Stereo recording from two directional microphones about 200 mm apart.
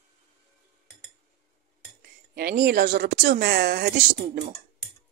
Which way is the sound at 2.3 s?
50° right (ahead or behind).